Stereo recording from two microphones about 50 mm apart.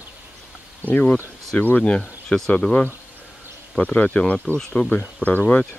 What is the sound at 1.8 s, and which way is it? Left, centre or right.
Speech, centre.